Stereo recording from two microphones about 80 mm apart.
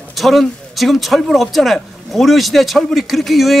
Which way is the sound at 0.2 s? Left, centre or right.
Centre.